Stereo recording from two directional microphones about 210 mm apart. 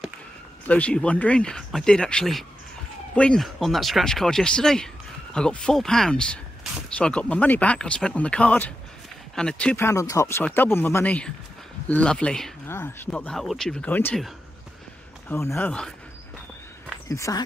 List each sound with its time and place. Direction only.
0.7 s speech: 5° left (ahead or behind)
17.1 s speech: 15° left (ahead or behind)